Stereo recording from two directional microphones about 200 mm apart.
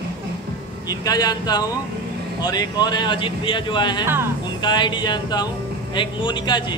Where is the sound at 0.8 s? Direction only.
20° left (ahead or behind).